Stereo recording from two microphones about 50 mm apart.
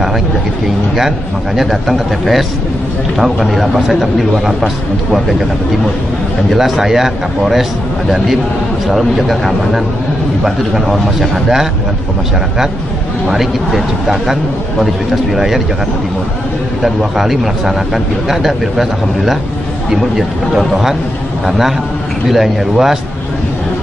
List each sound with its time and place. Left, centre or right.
0.9 s speech: centre
6.5 s speech: centre
8.8 s speech: centre
13.3 s speech: centre
16.8 s speech: centre